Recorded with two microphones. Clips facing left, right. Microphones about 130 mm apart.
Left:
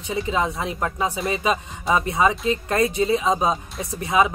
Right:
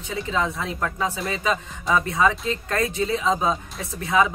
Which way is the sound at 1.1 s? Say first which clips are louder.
Left 2 dB; 5° left (ahead or behind).